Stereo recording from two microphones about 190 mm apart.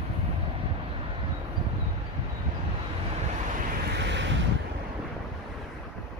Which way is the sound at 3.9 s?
65° right (ahead or behind).